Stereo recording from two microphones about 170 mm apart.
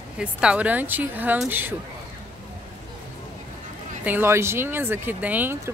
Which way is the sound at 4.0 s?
10° right (ahead or behind).